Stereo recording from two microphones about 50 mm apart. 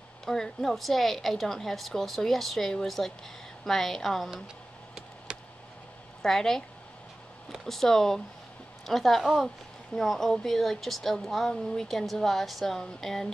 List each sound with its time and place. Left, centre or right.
0.2 s speech: centre
5.3 s a sound: right
6.2 s speech: centre
7.6 s speech: centre